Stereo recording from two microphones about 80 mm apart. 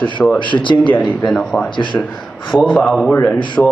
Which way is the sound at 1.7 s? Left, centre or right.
Left.